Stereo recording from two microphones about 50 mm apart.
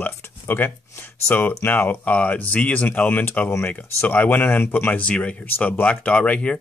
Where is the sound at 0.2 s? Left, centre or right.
Left.